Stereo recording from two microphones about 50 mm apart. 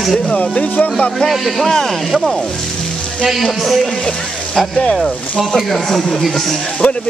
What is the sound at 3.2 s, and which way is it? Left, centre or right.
Speech, centre.